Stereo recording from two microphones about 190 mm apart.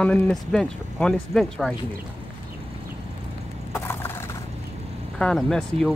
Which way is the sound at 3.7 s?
10° left (ahead or behind).